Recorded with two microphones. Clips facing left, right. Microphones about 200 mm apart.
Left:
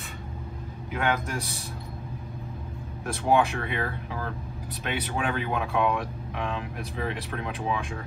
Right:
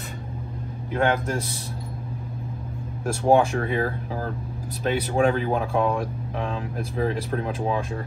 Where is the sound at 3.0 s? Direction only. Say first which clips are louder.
Right 4 dB; 35° right (ahead or behind).